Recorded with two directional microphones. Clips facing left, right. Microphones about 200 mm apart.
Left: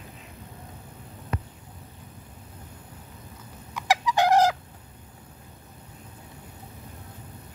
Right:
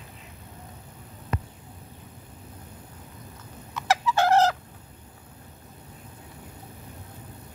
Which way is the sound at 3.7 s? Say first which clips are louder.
Even; 15° left (ahead or behind).